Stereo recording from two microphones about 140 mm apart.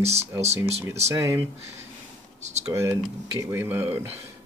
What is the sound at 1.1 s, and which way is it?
Speech, 20° right (ahead or behind).